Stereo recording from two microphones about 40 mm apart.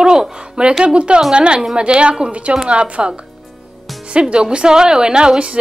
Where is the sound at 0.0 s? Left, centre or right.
Centre.